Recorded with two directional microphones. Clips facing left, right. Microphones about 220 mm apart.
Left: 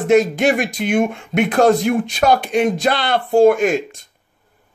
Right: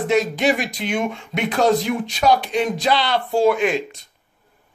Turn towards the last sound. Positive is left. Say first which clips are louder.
# left 3 dB
turn(degrees=45)  # may be behind; listen again after turning